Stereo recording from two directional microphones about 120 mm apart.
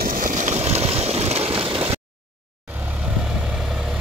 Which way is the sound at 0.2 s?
90° right.